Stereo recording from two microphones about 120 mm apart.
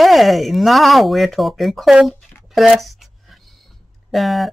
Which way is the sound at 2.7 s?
Centre (ahead or behind).